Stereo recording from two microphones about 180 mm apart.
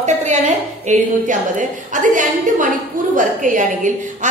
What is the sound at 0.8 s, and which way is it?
A woman's voice, 45° right (ahead or behind).